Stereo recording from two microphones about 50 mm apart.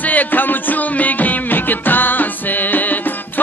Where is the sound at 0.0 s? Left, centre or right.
Left.